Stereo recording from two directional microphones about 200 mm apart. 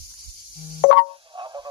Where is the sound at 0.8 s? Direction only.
55° left (ahead or behind).